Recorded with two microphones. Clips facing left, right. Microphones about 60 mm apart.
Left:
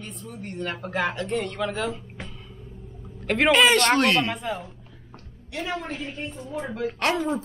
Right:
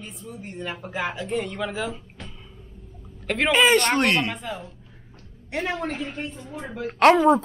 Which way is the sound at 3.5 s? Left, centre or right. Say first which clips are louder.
Right 1 dB; centre.